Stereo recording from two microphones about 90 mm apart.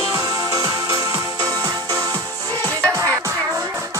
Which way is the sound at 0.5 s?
40° right (ahead or behind).